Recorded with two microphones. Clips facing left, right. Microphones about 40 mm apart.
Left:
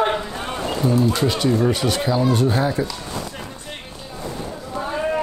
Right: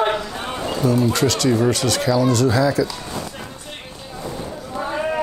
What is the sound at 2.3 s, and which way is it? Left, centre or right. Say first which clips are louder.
Speech: right 2 dB; right.